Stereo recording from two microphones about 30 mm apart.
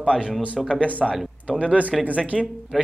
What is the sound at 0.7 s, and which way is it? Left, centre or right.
Speech, right.